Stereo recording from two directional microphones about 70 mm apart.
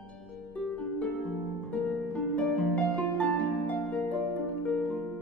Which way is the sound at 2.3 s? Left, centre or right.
Centre.